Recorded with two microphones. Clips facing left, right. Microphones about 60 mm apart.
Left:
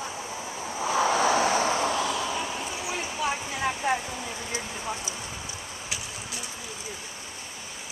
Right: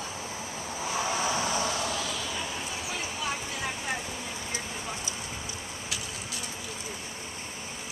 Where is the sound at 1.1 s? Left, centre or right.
Left.